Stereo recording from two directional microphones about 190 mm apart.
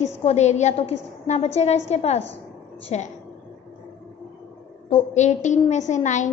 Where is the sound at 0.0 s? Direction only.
35° left (ahead or behind).